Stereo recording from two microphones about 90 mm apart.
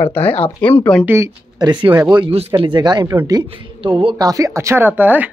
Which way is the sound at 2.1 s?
75° right (ahead or behind).